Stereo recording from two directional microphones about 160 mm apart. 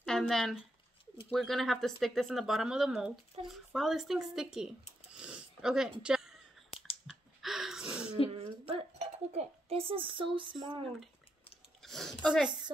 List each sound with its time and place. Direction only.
0.0 s speech: 5° left (ahead or behind)
5.1 s a sound: 5° right (ahead or behind)
8.4 s dishes: 40° right (ahead or behind)
11.8 s speech: centre (ahead or behind)